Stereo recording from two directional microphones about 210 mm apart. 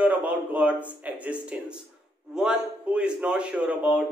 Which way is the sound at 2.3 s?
5° right (ahead or behind).